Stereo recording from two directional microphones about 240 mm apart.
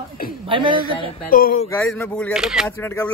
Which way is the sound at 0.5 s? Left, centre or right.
Centre.